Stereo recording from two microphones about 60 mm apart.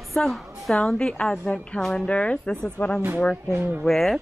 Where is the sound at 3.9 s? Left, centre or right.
Centre.